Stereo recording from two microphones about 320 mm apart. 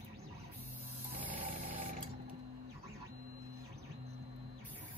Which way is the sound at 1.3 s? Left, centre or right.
Right.